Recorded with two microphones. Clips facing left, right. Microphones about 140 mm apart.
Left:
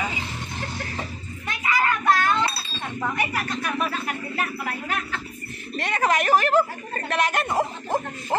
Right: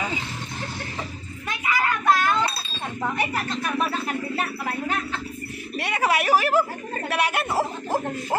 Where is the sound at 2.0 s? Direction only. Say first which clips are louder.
Right 2 dB; 15° right (ahead or behind).